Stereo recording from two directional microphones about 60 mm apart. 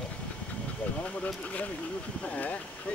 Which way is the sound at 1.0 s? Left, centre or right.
Left.